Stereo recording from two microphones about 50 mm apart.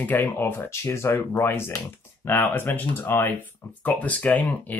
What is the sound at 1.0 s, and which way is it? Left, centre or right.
Speech, left.